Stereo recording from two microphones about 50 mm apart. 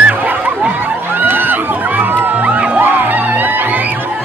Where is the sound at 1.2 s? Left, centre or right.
Right.